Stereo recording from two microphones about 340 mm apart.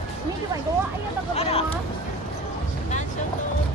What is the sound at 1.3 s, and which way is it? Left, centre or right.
Vehicle, centre.